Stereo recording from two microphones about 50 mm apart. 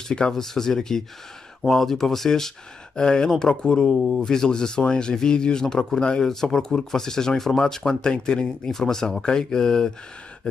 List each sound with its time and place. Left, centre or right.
0.3 s speech: centre